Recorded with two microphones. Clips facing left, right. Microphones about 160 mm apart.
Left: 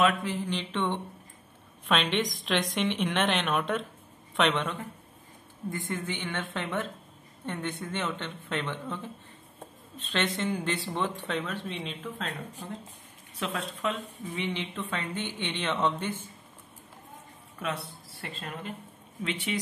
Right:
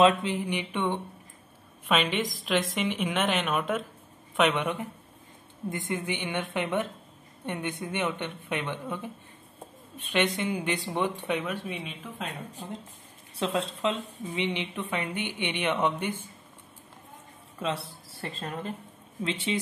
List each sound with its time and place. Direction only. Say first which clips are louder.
0.0 s a woman's voice: right 4 dB; 25° right (ahead or behind)
13.4 s a woman's voice: right 4 dB; 25° right (ahead or behind)
17.6 s speech: right 3 dB; 30° right (ahead or behind)
19.2 s speech: right 2 dB; 30° right (ahead or behind)